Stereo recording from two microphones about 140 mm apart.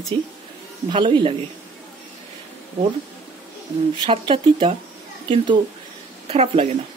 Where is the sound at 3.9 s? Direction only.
40° right (ahead or behind).